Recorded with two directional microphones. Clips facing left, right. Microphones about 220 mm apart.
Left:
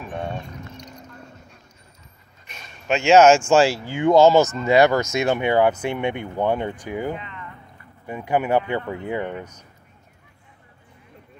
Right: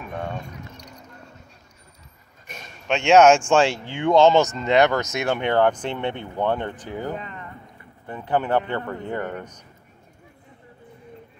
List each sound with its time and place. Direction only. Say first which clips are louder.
2.9 s speech: left 1 dB; 5° left (ahead or behind)
7.2 s speech: right 2 dB; 40° right (ahead or behind)
8.1 s speech: left 2 dB; 10° left (ahead or behind)